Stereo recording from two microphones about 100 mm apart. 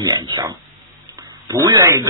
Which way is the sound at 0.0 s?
40° right (ahead or behind).